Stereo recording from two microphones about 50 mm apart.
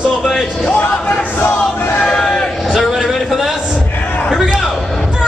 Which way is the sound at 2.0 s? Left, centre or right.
Centre.